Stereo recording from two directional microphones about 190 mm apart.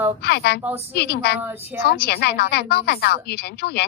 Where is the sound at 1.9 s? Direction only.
60° left (ahead or behind).